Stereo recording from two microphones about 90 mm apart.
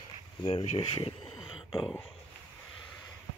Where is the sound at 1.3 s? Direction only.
55° left (ahead or behind).